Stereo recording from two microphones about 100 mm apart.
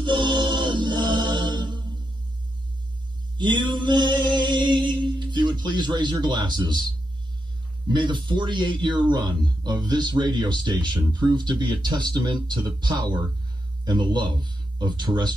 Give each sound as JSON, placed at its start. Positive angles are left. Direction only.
{"t": 0.0, "sound": "choir", "side_deg": -50}
{"t": 3.3, "sound": "mantra", "side_deg": -50}
{"t": 7.9, "sound": "speech", "side_deg": -50}